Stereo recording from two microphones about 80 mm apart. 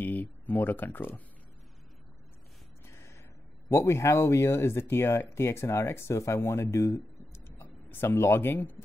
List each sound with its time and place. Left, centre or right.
0.0 s speech: left
2.9 s gasp: left
3.7 s speech: left